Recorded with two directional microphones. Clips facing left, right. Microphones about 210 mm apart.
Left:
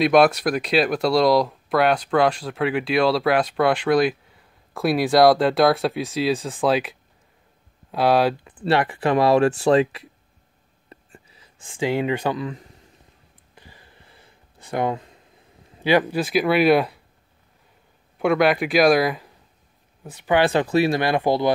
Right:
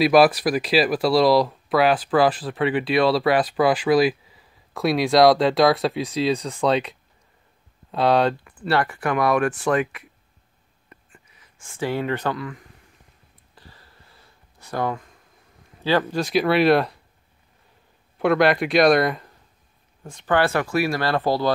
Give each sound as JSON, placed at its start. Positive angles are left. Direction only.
{"t": 0.0, "sound": "speech", "side_deg": -5}
{"t": 8.5, "sound": "speech", "side_deg": 20}
{"t": 10.9, "sound": "writing", "side_deg": 35}
{"t": 11.6, "sound": "speech", "side_deg": 15}
{"t": 13.6, "sound": "a sound", "side_deg": 15}
{"t": 15.8, "sound": "speech", "side_deg": 15}
{"t": 16.2, "sound": "speech", "side_deg": 0}
{"t": 18.1, "sound": "speech", "side_deg": 0}